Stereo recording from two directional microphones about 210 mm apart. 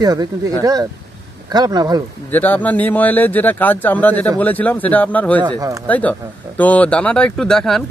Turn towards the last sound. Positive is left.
turn(degrees=0)  # may be behind; listen again after turning